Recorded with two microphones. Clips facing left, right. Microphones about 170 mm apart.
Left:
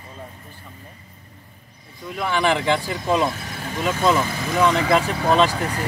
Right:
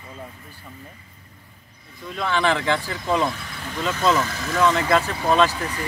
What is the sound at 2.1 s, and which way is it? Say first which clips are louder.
Speech: left 1 dB; 10° left (ahead or behind).